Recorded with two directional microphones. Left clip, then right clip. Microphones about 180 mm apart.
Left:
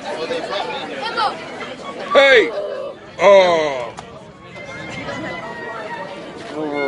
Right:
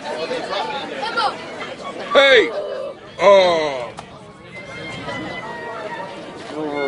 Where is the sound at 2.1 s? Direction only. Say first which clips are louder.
Left 1 dB; centre (ahead or behind).